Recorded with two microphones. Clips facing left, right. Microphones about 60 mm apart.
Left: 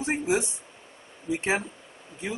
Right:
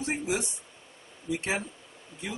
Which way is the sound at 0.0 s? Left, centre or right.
Left.